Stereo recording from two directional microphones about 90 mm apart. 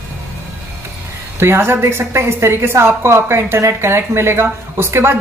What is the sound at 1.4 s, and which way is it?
Speech, 25° right (ahead or behind).